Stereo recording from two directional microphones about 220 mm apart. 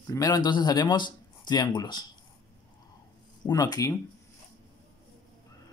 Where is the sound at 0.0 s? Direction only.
15° left (ahead or behind).